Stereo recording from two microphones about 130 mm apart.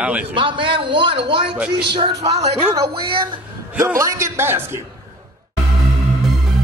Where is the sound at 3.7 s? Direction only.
20° right (ahead or behind).